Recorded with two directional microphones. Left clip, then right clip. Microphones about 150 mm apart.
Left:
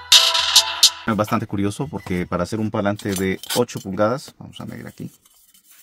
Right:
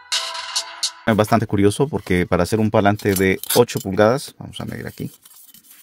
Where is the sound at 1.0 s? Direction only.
55° right (ahead or behind).